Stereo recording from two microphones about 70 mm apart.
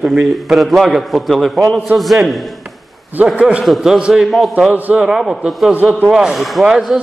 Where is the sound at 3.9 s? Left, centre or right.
Centre.